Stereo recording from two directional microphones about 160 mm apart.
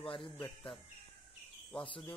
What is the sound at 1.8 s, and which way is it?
Speech, 30° left (ahead or behind).